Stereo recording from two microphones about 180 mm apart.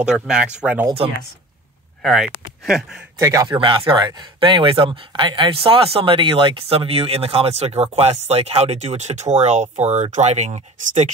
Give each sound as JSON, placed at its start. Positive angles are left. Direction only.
{"t": 0.0, "sound": "speech", "side_deg": -5}
{"t": 0.8, "sound": "speech", "side_deg": -30}
{"t": 2.0, "sound": "speech", "side_deg": 0}
{"t": 3.2, "sound": "speech", "side_deg": -15}
{"t": 3.5, "sound": "speech", "side_deg": -30}